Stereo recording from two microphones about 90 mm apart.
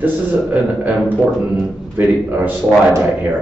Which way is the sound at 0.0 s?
20° right (ahead or behind).